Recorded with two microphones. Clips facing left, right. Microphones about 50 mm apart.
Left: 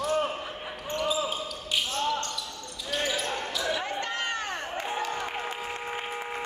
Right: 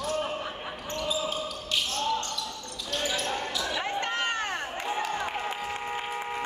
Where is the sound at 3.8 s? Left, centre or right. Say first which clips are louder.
Right 2 dB; right.